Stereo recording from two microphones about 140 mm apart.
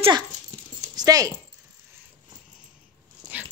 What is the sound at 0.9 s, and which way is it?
Speech, 25° right (ahead or behind).